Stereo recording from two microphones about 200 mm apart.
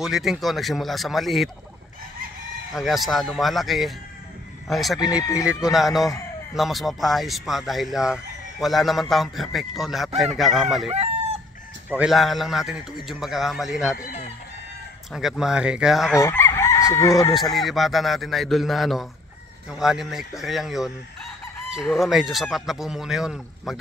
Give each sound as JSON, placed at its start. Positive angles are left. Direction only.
{"t": 0.0, "sound": "speech", "side_deg": 0}
{"t": 2.7, "sound": "speech", "side_deg": 0}
{"t": 5.1, "sound": "speech", "side_deg": 15}
{"t": 5.5, "sound": "speech", "side_deg": -5}
{"t": 10.9, "sound": "chicken", "side_deg": -30}
{"t": 11.9, "sound": "speech", "side_deg": -5}
{"t": 15.1, "sound": "speech", "side_deg": 0}
{"t": 16.2, "sound": "chicken", "side_deg": 15}
{"t": 17.3, "sound": "speech", "side_deg": 0}
{"t": 21.9, "sound": "speech", "side_deg": 0}